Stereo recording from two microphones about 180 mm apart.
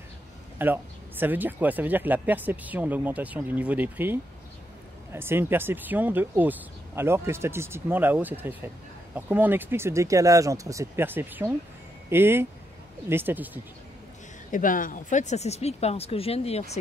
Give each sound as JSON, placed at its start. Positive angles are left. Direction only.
{"t": 0.6, "sound": "speech", "side_deg": -10}
{"t": 14.5, "sound": "speech", "side_deg": 50}